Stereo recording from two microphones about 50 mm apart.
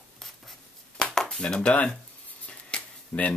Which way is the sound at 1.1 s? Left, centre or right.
Centre.